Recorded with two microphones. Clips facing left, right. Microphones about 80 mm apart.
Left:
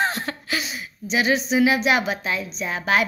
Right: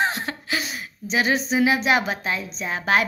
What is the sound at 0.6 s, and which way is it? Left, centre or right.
Speech, right.